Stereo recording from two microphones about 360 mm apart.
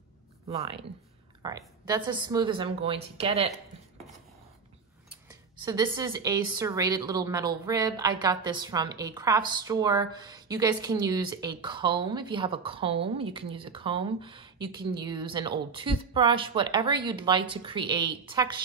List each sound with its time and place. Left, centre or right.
0.5 s speech: centre
5.1 s speech: centre